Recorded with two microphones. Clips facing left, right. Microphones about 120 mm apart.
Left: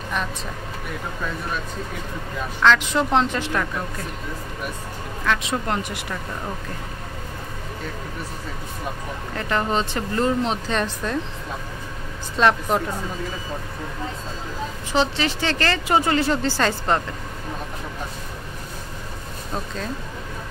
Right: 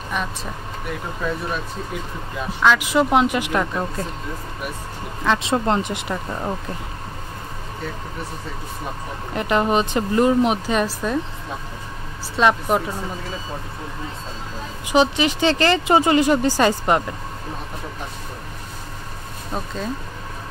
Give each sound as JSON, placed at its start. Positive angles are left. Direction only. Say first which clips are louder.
{"t": 2.6, "sound": "speech", "louder": "right 1 dB", "side_deg": -5}
{"t": 5.2, "sound": "speech", "louder": "right 4 dB", "side_deg": -25}
{"t": 9.3, "sound": "speech", "louder": "right 4 dB", "side_deg": -20}
{"t": 12.4, "sound": "speech", "louder": "right 1 dB", "side_deg": -5}
{"t": 14.9, "sound": "speech", "louder": "right 5 dB", "side_deg": -15}